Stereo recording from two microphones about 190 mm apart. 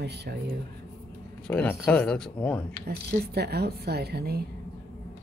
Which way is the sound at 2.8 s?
60° right (ahead or behind).